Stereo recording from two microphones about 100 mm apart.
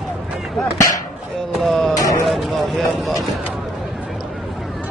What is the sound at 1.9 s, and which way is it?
Speech, 35° left (ahead or behind).